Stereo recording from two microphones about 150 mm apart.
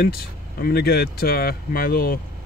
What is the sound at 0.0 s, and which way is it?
Speech, 90° left.